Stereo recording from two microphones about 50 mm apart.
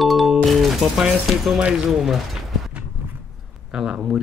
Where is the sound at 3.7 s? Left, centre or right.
Right.